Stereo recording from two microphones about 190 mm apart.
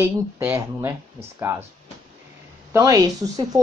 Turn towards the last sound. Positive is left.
turn(degrees=-15)  # may be behind; listen again after turning